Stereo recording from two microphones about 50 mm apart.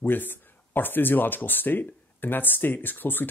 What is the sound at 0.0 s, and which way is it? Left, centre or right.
Speech, left.